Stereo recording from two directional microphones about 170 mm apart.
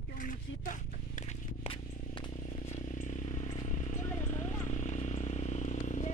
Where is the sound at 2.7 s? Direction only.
45° left (ahead or behind).